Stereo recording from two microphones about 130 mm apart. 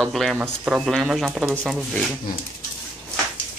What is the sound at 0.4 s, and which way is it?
Speech, 10° right (ahead or behind).